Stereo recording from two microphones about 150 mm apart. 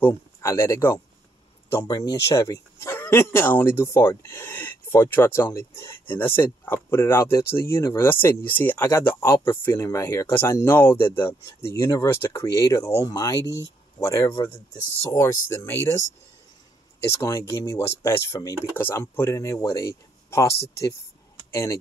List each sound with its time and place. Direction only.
0.0 s speech: 15° left (ahead or behind)
17.0 s speech: 15° left (ahead or behind)